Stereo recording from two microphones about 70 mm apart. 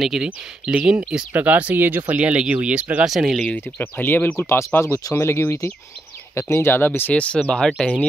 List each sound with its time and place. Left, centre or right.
0.0 s speech: centre
3.1 s speech: centre
3.3 s speech: centre
4.0 s speech: left
4.4 s speech: left
7.2 s speech: centre